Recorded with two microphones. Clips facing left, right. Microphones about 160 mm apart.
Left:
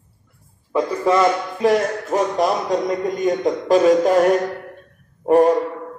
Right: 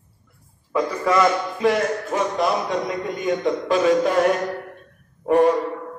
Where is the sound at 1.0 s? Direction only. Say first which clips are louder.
Left 2 dB; 35° left (ahead or behind).